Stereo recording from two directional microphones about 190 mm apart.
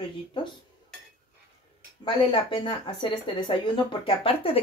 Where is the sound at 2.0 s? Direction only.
25° left (ahead or behind).